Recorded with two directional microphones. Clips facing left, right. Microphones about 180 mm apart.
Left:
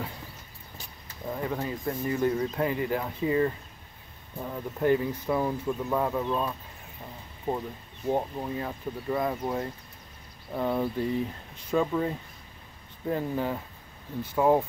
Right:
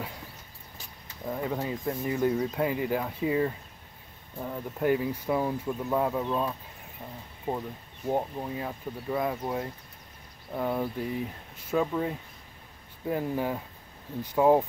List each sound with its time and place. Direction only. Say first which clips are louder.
1.3 s speech: even; 10° right (ahead or behind)
8.1 s speech: left 1 dB; 5° right (ahead or behind)